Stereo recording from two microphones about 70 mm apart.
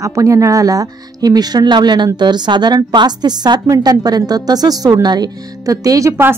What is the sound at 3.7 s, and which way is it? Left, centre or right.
Speech, right.